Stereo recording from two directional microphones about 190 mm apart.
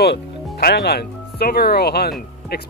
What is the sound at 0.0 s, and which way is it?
Speech, 55° left (ahead or behind).